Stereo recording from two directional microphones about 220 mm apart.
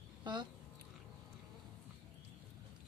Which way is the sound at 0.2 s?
20° right (ahead or behind).